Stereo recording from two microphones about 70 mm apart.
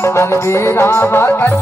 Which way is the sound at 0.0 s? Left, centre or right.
Left.